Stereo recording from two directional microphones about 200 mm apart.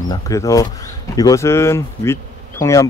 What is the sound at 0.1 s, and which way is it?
Speech, 15° left (ahead or behind).